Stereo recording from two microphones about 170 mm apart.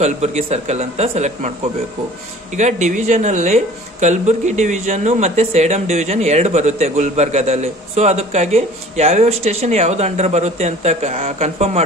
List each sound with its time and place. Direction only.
0.0 s speech: 40° right (ahead or behind)
2.5 s speech: 45° right (ahead or behind)